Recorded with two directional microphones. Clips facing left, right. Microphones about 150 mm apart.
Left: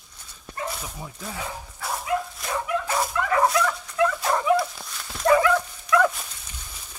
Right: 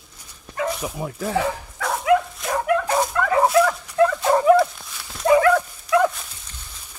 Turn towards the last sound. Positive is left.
turn(degrees=-25)  # may be behind; listen again after turning